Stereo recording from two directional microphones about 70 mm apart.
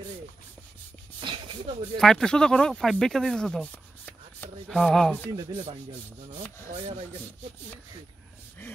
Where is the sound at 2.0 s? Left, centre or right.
Centre.